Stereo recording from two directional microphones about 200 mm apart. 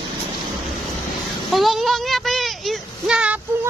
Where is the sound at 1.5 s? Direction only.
Centre (ahead or behind).